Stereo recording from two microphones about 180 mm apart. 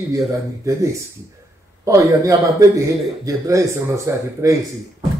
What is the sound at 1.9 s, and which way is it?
Speech, 15° right (ahead or behind).